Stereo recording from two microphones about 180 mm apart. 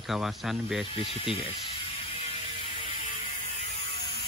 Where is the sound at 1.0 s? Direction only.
30° left (ahead or behind).